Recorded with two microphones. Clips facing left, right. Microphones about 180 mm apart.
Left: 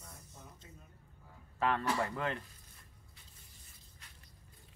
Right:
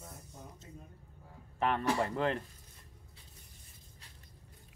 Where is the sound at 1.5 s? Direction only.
20° right (ahead or behind).